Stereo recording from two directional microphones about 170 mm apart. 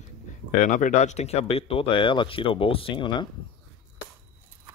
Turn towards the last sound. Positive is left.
turn(degrees=30)  # may be behind; listen again after turning